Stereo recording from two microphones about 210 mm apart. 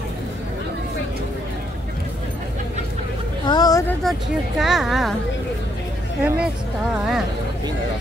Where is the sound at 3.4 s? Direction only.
20° left (ahead or behind).